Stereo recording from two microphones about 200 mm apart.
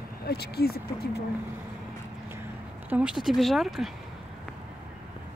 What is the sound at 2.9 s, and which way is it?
Speech, 5° right (ahead or behind).